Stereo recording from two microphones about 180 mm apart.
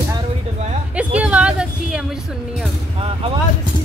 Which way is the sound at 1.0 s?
5° right (ahead or behind).